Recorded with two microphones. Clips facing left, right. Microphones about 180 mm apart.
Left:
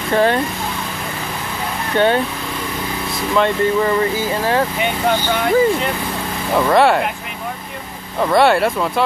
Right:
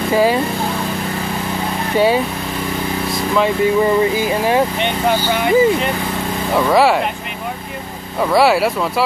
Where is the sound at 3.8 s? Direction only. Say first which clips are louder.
Right 3 dB; 15° right (ahead or behind).